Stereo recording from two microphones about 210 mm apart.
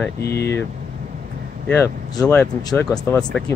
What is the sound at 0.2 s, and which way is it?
Speech, 50° left (ahead or behind).